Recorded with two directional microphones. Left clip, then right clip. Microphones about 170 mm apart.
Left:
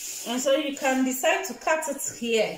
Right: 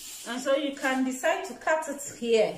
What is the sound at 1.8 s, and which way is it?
Speech, 5° right (ahead or behind).